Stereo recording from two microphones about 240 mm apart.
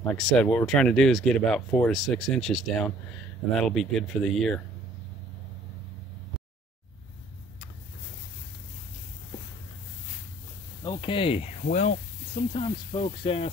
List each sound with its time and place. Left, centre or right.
0.0 s speech: centre
10.8 s speech: centre